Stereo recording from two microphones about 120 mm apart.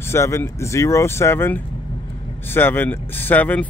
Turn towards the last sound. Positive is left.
turn(degrees=15)  # may be behind; listen again after turning